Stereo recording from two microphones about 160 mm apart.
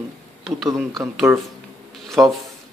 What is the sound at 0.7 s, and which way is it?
Speech, 20° right (ahead or behind).